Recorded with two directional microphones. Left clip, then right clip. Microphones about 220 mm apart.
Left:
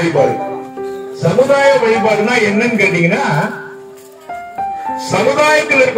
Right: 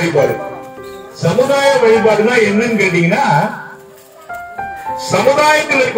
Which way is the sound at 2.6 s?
5° left (ahead or behind).